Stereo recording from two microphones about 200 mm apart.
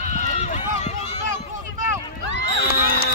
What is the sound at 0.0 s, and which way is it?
Run, 35° left (ahead or behind).